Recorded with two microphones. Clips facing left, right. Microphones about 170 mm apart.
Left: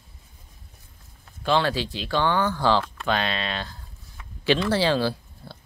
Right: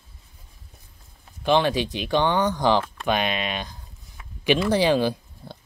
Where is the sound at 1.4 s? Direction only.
15° right (ahead or behind).